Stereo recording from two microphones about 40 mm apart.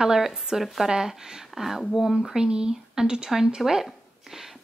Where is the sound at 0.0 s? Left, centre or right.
Centre.